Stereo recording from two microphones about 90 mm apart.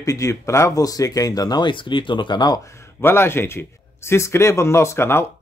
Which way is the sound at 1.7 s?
65° left (ahead or behind).